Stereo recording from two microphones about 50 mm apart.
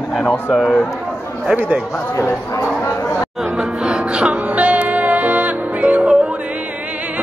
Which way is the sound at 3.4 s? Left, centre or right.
Centre.